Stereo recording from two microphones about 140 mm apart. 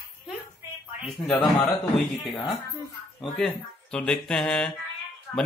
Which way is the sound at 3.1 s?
Centre (ahead or behind).